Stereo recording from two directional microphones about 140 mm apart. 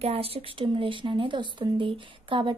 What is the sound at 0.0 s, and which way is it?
Speech, 45° right (ahead or behind).